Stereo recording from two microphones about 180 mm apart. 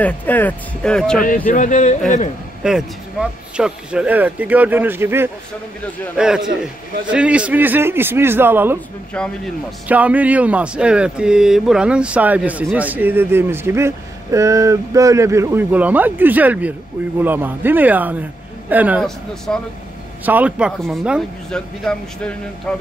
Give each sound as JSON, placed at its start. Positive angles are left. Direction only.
{"t": 0.0, "sound": "speech", "side_deg": 10}
{"t": 1.2, "sound": "speech", "side_deg": 50}
{"t": 2.6, "sound": "speech", "side_deg": -5}
{"t": 9.1, "sound": "speech", "side_deg": 5}
{"t": 9.8, "sound": "speech", "side_deg": -10}
{"t": 19.0, "sound": "speech", "side_deg": 5}
{"t": 20.2, "sound": "speech", "side_deg": -10}